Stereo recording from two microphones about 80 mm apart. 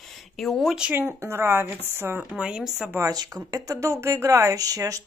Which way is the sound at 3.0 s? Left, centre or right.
Right.